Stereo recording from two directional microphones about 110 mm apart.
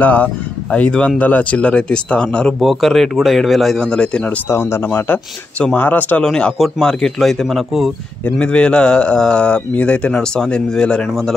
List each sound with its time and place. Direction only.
0.0 s speech: 15° left (ahead or behind)
4.5 s a man's voice: 25° left (ahead or behind); by 11.3 s 5° left (ahead or behind)